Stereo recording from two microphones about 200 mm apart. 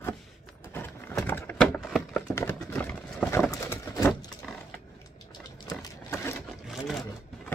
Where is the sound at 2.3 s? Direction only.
10° left (ahead or behind).